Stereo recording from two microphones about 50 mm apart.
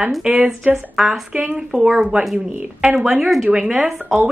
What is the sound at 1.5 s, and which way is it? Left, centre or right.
A woman's voice, centre.